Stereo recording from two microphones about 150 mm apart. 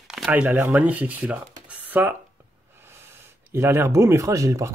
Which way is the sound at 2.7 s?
15° right (ahead or behind).